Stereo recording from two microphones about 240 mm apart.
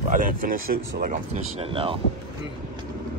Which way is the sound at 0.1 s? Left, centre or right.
Right.